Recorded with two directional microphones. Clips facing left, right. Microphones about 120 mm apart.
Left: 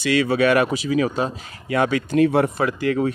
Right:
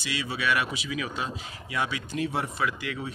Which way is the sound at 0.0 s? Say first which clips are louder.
Left 13 dB; 60° left (ahead or behind).